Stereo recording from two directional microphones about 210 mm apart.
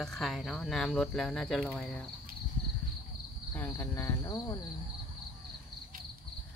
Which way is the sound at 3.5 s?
10° left (ahead or behind).